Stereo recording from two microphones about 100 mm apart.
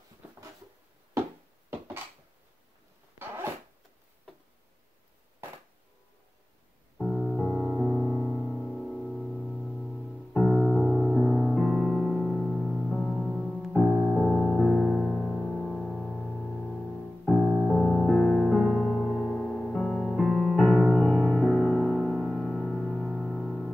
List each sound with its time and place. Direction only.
3.2 s zipper: 25° right (ahead or behind)
7.0 s music: centre (ahead or behind)
7.9 s music: centre (ahead or behind)
18.0 s music: 5° left (ahead or behind)